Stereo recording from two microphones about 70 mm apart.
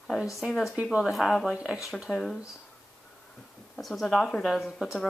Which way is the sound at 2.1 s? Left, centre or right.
Centre.